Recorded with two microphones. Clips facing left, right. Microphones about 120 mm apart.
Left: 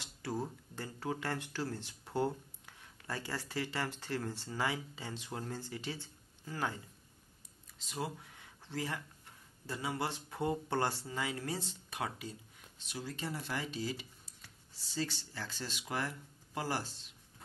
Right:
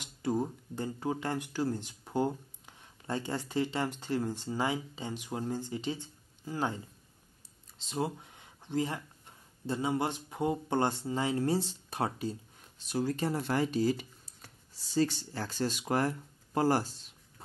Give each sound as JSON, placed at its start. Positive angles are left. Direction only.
{"t": 0.0, "sound": "speech", "side_deg": -15}
{"t": 7.8, "sound": "speech", "side_deg": -25}
{"t": 12.8, "sound": "speech", "side_deg": -45}